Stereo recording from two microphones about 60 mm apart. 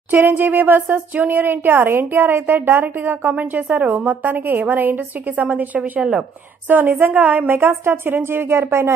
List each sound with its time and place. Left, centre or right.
0.1 s a woman's voice: right
6.7 s speech: right